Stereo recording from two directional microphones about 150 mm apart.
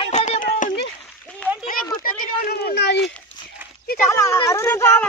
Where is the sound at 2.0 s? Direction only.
80° left.